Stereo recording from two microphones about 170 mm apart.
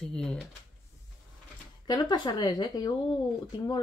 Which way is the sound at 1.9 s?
25° left (ahead or behind).